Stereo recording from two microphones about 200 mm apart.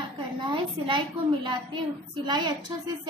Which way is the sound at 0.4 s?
25° right (ahead or behind).